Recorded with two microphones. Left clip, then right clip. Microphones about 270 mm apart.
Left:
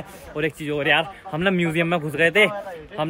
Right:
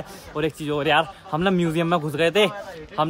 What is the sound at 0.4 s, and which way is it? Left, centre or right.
A man's voice, centre.